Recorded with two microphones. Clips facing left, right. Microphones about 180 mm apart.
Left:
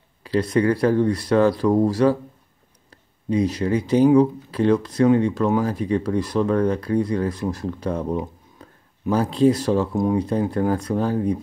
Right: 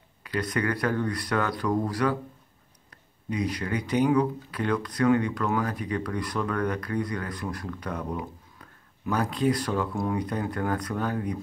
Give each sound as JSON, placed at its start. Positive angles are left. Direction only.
{"t": 0.2, "sound": "speech", "side_deg": 30}